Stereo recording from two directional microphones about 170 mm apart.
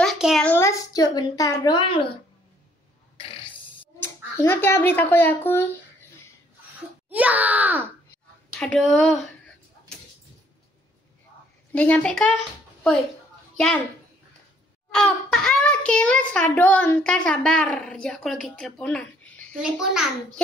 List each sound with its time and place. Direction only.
0.0 s a sound: centre (ahead or behind)
0.5 s a woman's voice: 15° left (ahead or behind)
3.2 s throat clearing: 30° left (ahead or behind)
4.0 s speech: 15° left (ahead or behind)
7.1 s speech: 10° right (ahead or behind)
8.5 s a child's voice: 5° left (ahead or behind)
11.7 s a child's voice: 10° left (ahead or behind)
13.6 s a child's voice: 5° left (ahead or behind)
14.9 s a child's voice: 5° left (ahead or behind)
19.5 s a child's voice: 5° right (ahead or behind)